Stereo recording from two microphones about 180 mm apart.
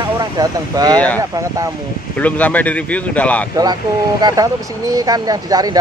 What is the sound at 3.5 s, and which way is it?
Speech, 20° right (ahead or behind).